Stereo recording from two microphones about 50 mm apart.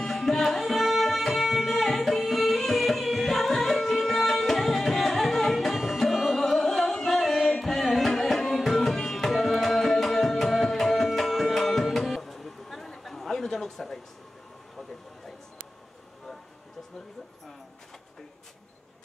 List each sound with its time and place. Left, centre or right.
0.0 s tabla: centre
7.5 s music: centre